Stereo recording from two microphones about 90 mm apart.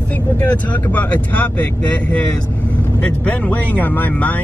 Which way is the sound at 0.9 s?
20° left (ahead or behind).